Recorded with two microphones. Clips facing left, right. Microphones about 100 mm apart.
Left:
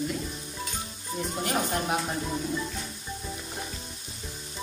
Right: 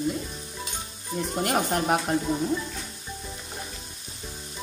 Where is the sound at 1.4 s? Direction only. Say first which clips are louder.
Right 4 dB; 55° right (ahead or behind).